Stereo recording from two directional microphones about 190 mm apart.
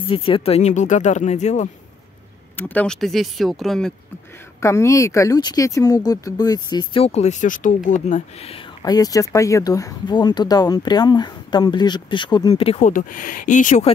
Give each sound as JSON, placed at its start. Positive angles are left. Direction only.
{"t": 0.1, "sound": "speech", "side_deg": 30}
{"t": 2.5, "sound": "speech", "side_deg": 10}
{"t": 4.6, "sound": "speech", "side_deg": 15}
{"t": 12.9, "sound": "speech", "side_deg": 45}